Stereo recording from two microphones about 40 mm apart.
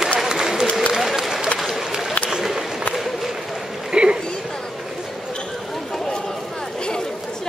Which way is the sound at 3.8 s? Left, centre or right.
Centre.